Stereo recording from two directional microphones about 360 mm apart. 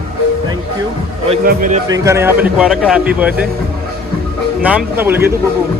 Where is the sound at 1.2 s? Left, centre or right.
Centre.